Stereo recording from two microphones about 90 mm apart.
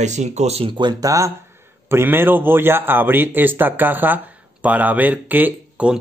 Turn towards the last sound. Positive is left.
turn(degrees=-15)  # may be behind; listen again after turning